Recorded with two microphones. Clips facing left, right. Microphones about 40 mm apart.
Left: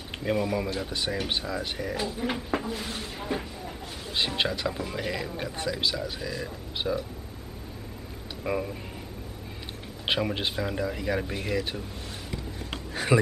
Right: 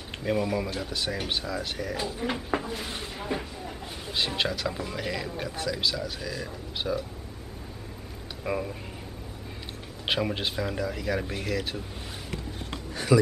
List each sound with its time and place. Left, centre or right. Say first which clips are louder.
0.1 s speech: even; centre
4.4 s speech: left 1 dB; centre
8.5 s speech: left 1 dB; centre
10.0 s speech: even; centre
13.1 s a man's voice: right 2 dB; left